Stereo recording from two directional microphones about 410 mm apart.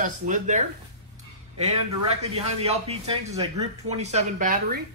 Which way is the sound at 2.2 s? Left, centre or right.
Centre.